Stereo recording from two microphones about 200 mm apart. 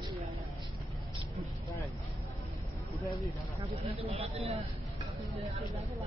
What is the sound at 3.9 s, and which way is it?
Speech, 30° right (ahead or behind).